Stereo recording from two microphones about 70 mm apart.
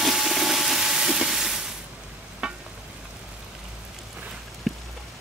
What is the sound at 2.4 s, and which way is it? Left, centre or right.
Stir, centre.